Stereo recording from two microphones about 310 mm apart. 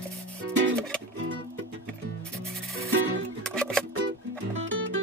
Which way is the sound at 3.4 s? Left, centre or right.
Centre.